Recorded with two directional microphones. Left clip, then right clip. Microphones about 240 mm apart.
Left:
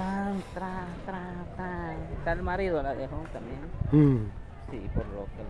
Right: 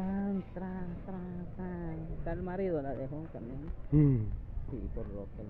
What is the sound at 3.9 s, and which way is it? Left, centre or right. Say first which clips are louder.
Speech: left 7 dB; centre.